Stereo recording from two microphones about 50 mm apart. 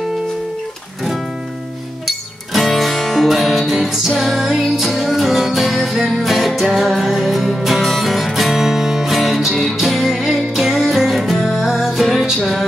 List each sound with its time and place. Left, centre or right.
2.0 s music: centre